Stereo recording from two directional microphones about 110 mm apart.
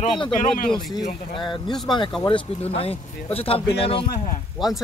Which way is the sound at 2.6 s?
65° left (ahead or behind).